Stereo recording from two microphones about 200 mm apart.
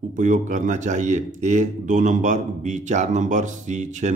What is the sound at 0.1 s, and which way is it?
A man's voice, 40° right (ahead or behind).